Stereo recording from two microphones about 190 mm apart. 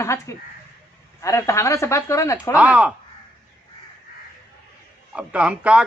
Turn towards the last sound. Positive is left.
turn(degrees=-5)  # may be behind; listen again after turning